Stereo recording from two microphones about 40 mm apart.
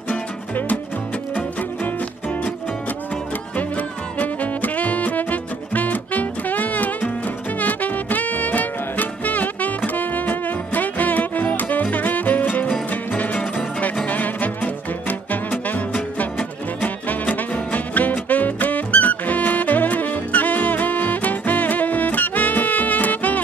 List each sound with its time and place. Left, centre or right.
3.5 s music: left